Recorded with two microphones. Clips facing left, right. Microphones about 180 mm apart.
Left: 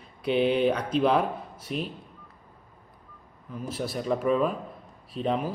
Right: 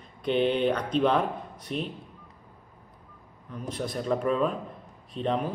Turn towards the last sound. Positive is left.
turn(degrees=5)  # may be behind; listen again after turning